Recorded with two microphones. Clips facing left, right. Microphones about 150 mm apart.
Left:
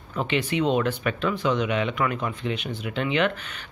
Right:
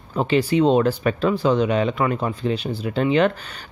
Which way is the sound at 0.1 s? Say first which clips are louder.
Right 6 dB; 35° right (ahead or behind).